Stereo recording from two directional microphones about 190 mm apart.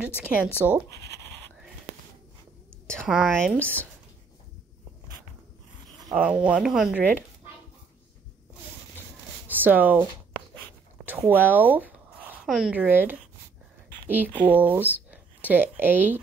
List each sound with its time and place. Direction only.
0.0 s speech: 5° right (ahead or behind)
3.0 s speech: 5° right (ahead or behind)
6.0 s speech: 10° right (ahead or behind)
9.5 s speech: 10° right (ahead or behind)
11.1 s speech: 10° right (ahead or behind)